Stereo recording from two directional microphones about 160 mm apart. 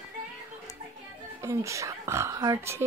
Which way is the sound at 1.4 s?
20° right (ahead or behind).